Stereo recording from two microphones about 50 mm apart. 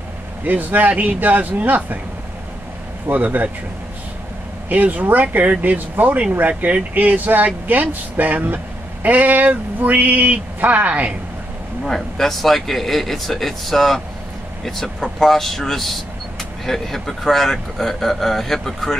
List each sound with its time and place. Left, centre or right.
0.4 s speech: right
3.1 s speech: right
4.6 s speech: right
11.8 s speech: centre